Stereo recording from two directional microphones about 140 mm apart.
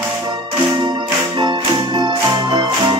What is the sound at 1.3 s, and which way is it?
Music, 35° right (ahead or behind).